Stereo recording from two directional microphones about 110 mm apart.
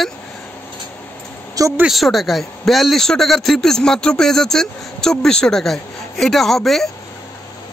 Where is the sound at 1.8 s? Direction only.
Centre (ahead or behind).